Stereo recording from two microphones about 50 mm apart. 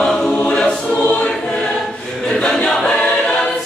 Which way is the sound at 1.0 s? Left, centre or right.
Left.